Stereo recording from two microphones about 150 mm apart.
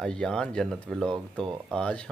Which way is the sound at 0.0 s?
5° left (ahead or behind).